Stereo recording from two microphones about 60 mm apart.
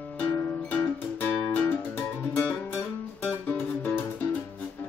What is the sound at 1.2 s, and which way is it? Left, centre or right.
Music, left.